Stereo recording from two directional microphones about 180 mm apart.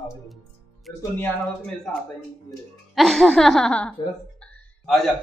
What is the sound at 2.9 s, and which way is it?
Speech, centre (ahead or behind).